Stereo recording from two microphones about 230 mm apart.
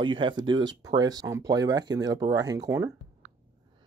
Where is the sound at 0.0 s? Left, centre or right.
Right.